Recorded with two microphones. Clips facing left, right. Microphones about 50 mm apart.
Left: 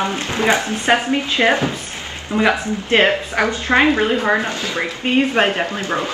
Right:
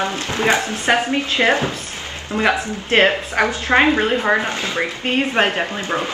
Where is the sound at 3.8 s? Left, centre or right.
Centre.